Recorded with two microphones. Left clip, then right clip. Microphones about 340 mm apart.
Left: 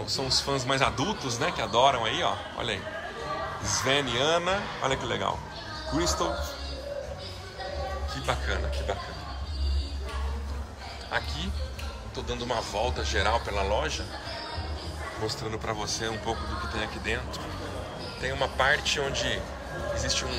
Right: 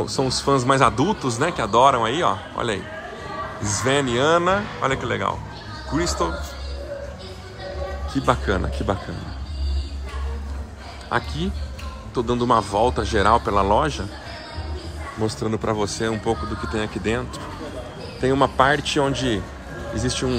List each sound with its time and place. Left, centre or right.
0.3 s speech: centre
8.1 s speech: centre
11.1 s speech: centre
15.2 s speech: centre
18.2 s speech: centre